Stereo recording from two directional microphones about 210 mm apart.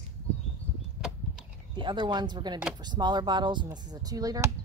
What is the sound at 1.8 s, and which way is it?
Speech, 20° right (ahead or behind).